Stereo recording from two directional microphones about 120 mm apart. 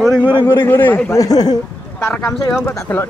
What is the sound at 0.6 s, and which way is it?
Speech, 15° left (ahead or behind).